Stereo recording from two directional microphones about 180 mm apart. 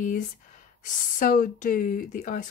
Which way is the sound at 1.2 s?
45° left (ahead or behind).